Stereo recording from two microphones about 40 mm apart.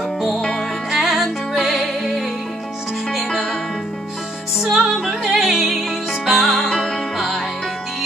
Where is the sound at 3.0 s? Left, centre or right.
Centre.